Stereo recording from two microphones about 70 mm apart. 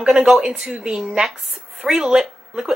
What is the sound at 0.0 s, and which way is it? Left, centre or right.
A woman's voice, centre.